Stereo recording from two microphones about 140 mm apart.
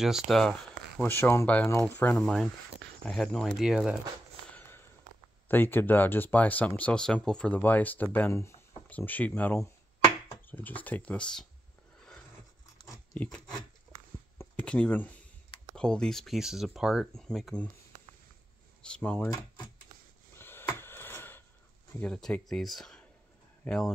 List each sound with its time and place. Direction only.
0.0 s speech: centre (ahead or behind)
1.0 s speech: 15° left (ahead or behind); by 4.0 s 5° right (ahead or behind)
4.6 s a sound: 15° left (ahead or behind)
5.5 s speech: 15° left (ahead or behind)
9.6 s a sound: 25° left (ahead or behind)
10.5 s speech: 10° left (ahead or behind)
12.7 s biting: 20° left (ahead or behind)
13.1 s a sound: 5° left (ahead or behind)
14.4 s speech: 10° left (ahead or behind)
18.8 s speech: 5° left (ahead or behind)
20.3 s a sound: 15° left (ahead or behind)
22.0 s speech: 5° left (ahead or behind)